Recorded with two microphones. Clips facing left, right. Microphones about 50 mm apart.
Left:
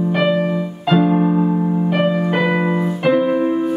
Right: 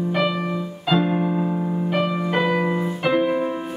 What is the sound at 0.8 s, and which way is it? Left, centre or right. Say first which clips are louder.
Music: left 5 dB; centre.